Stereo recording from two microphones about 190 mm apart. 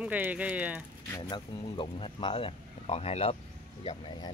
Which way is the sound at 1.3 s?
25° left (ahead or behind).